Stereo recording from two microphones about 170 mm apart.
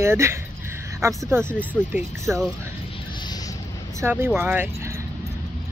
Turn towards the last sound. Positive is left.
turn(degrees=-15)  # may be behind; listen again after turning